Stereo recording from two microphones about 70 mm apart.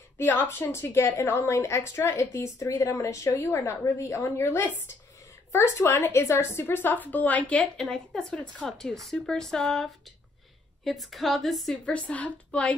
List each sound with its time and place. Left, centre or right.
0.2 s a woman's voice: left
7.6 s speech: centre
11.9 s speech: centre